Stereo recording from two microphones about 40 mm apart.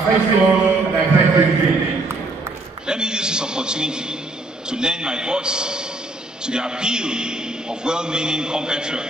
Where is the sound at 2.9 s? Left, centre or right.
Right.